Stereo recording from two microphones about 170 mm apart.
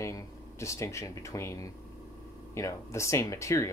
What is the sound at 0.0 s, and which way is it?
Speech, 15° left (ahead or behind).